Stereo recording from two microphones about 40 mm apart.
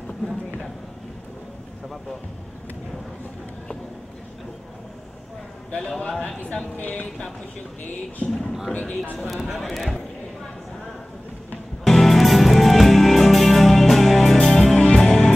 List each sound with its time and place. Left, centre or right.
5.8 s a man's voice: centre
6.8 s speech: left
8.3 s speech: centre
8.7 s speech: left
9.3 s speech: centre
11.8 s music: centre